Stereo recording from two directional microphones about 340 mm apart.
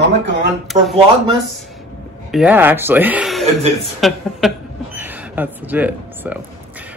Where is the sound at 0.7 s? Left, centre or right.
Centre.